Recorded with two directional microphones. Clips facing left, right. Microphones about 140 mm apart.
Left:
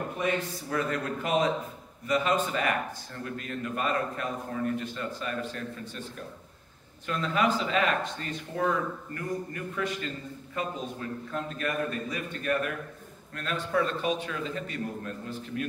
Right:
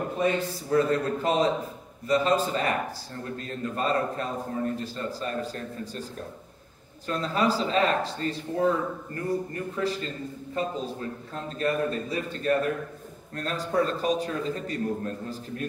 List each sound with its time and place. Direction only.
0.2 s speech: 30° right (ahead or behind)
7.1 s speech: 35° right (ahead or behind)